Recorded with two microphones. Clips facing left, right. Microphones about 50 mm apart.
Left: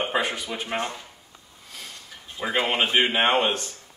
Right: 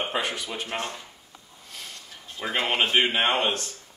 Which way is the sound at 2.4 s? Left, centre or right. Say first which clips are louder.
Left 1 dB; centre.